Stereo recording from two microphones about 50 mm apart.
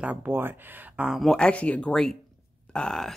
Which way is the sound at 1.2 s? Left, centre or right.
Centre.